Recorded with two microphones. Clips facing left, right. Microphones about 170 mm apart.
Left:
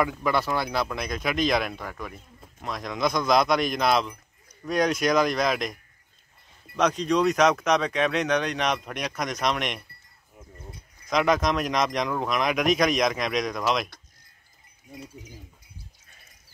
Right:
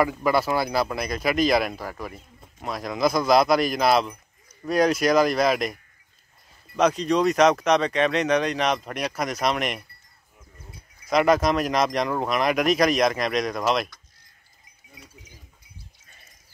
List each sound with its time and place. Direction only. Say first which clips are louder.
0.0 s speech: right 3 dB; 5° right (ahead or behind)
6.8 s speech: right 2 dB; centre (ahead or behind)
11.1 s speech: right 3 dB; 5° right (ahead or behind)
14.9 s speech: left 8 dB; 40° left (ahead or behind)